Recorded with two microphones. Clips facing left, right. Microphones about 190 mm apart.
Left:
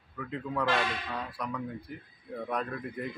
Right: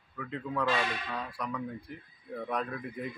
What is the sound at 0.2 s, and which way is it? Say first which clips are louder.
Speech: left 1 dB; centre (ahead or behind).